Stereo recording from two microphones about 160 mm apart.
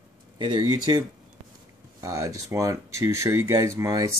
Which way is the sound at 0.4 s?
30° right (ahead or behind).